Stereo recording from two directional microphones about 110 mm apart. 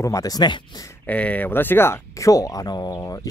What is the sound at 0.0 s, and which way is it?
Speech, 30° left (ahead or behind).